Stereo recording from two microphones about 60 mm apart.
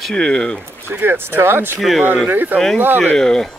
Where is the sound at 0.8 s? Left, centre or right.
Right.